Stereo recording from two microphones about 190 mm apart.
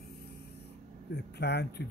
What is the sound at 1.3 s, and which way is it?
Speech, 60° left (ahead or behind).